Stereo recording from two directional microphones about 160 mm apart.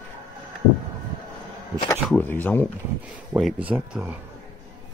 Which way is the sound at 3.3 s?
5° right (ahead or behind).